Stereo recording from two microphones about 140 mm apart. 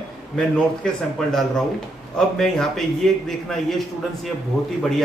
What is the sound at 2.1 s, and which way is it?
A man's voice, 5° left (ahead or behind).